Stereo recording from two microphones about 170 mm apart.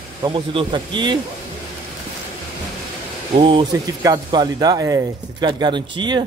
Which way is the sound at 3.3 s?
30° right (ahead or behind).